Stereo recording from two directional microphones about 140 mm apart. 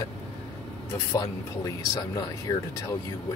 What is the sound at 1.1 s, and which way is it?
Speech, 25° left (ahead or behind).